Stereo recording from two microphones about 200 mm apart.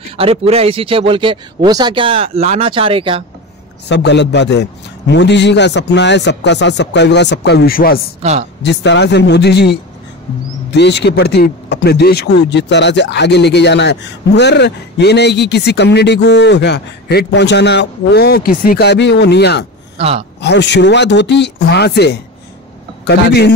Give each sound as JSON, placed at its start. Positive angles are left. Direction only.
{"t": 0.2, "sound": "speech", "side_deg": -30}
{"t": 3.9, "sound": "speech", "side_deg": 60}
{"t": 8.2, "sound": "a woman's voice", "side_deg": -30}
{"t": 8.6, "sound": "speech", "side_deg": 60}
{"t": 20.0, "sound": "speech", "side_deg": -30}
{"t": 20.3, "sound": "speech", "side_deg": 60}